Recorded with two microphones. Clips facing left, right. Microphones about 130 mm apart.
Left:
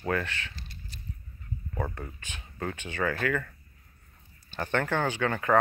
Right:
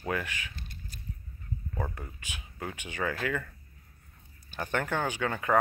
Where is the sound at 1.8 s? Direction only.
10° right (ahead or behind).